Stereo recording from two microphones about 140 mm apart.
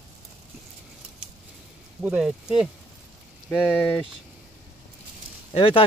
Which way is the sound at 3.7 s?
10° left (ahead or behind).